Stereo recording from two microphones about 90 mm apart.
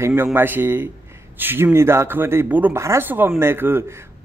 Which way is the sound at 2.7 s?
30° right (ahead or behind).